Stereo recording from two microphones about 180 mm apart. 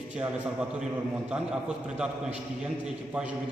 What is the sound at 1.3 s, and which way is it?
A man's voice, 5° right (ahead or behind).